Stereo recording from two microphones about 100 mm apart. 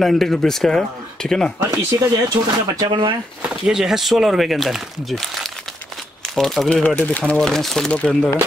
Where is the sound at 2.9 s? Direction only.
55° right (ahead or behind).